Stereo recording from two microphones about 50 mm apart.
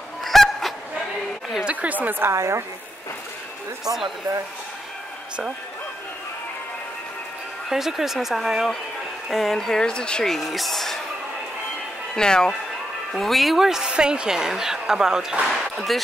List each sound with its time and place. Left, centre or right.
0.2 s honk: centre
1.7 s a woman's voice: right
2.3 s a woman's voice: right
3.8 s speech: centre
7.7 s speech: centre
10.2 s speech: centre
12.2 s speech: centre
13.1 s speech: centre
13.8 s speech: centre
15.9 s speech: centre